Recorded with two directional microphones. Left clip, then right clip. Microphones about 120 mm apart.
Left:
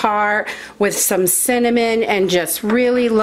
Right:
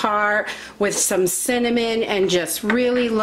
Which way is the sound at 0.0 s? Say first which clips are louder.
Left 3 dB; 30° left (ahead or behind).